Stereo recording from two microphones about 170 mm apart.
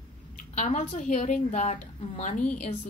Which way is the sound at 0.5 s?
45° left (ahead or behind).